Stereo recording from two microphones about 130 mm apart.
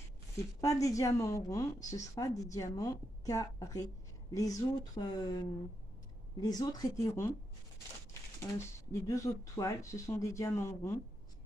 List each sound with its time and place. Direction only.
0.6 s a woman's voice: 25° left (ahead or behind)
8.4 s a woman's voice: 20° left (ahead or behind)